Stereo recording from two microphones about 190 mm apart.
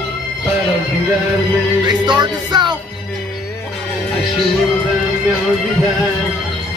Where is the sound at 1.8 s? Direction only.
25° right (ahead or behind).